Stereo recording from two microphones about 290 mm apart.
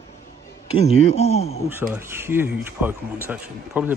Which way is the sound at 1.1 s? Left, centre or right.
Left.